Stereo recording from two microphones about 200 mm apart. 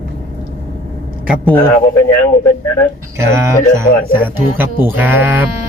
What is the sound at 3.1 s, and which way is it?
Speech, 15° right (ahead or behind).